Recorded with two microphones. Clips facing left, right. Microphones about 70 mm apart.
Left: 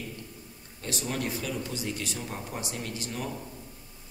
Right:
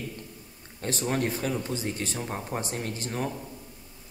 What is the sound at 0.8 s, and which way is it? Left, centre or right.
Speech, right.